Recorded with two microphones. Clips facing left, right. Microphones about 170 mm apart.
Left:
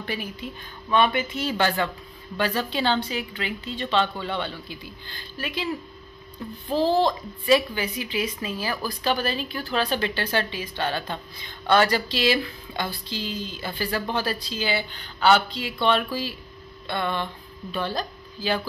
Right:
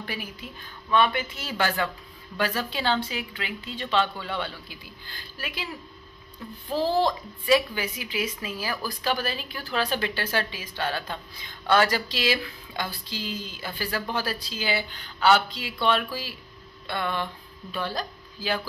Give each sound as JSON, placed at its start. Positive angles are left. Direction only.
{"t": 0.0, "sound": "speech", "side_deg": -5}
{"t": 0.8, "sound": "speech", "side_deg": 15}
{"t": 1.3, "sound": "a woman's voice", "side_deg": -5}
{"t": 6.7, "sound": "a woman's voice", "side_deg": -5}
{"t": 16.8, "sound": "music", "side_deg": -5}
{"t": 17.8, "sound": "speech", "side_deg": -10}